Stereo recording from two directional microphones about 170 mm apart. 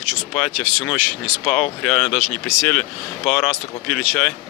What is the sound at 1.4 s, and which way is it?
Speech, 5° left (ahead or behind).